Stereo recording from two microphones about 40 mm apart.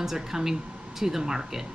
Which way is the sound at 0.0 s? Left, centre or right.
Centre.